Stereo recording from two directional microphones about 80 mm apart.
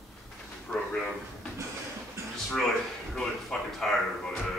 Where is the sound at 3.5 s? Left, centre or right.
Centre.